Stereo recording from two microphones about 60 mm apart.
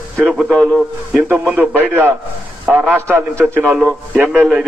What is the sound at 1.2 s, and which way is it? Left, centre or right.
A man's voice, right.